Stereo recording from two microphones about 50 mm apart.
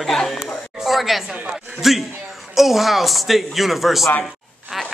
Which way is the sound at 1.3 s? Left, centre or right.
Right.